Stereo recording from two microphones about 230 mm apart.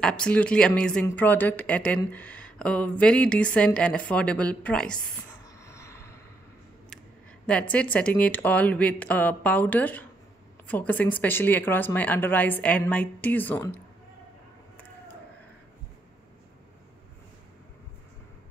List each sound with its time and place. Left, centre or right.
0.0 s speech: centre
5.6 s a sound: centre
7.7 s speech: centre